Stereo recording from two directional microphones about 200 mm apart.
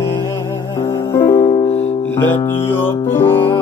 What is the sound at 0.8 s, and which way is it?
Music, 15° left (ahead or behind).